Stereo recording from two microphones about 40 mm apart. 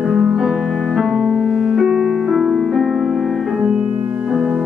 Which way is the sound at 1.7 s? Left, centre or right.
Centre.